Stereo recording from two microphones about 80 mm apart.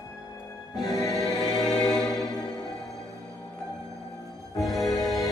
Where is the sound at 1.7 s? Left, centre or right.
Centre.